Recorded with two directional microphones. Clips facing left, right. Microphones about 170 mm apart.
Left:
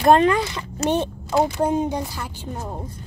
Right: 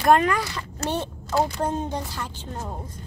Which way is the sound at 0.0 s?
30° left (ahead or behind).